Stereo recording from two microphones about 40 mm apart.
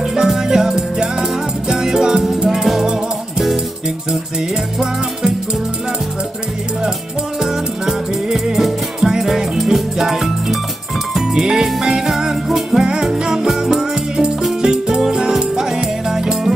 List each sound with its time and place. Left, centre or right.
0.0 s music: centre
7.3 s music: centre